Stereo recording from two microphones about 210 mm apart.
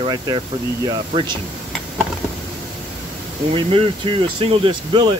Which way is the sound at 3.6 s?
25° right (ahead or behind).